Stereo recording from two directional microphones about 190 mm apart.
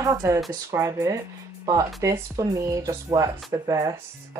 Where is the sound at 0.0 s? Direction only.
20° right (ahead or behind).